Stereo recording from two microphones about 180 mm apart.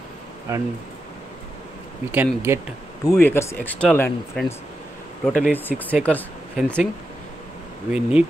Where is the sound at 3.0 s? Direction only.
15° left (ahead or behind).